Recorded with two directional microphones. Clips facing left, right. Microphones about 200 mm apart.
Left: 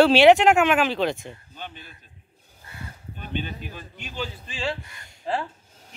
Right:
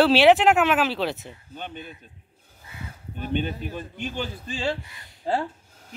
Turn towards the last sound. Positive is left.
turn(degrees=0)  # may be behind; listen again after turning